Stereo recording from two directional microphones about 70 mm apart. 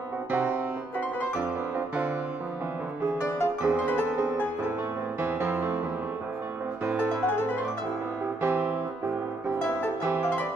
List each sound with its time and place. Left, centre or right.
0.3 s music: right
3.6 s music: right
4.2 s music: right
8.4 s music: right